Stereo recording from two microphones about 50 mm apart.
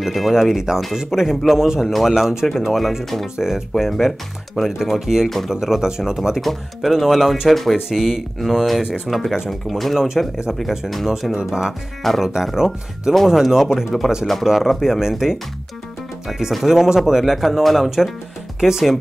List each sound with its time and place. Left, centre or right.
0.0 s speech: centre
8.8 s speech: centre
9.5 s speech: centre
9.9 s speech: centre
12.0 s speech: centre
12.4 s speech: centre